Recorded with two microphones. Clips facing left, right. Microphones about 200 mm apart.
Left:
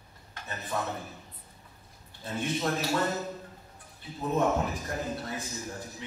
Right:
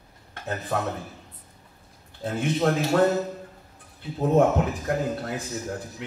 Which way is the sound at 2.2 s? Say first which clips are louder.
Right 7 dB; 55° right (ahead or behind).